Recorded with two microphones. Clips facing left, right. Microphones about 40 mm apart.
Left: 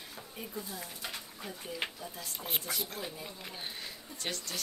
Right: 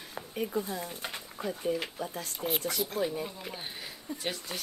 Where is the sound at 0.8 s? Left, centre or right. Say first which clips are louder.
Right 6 dB; right.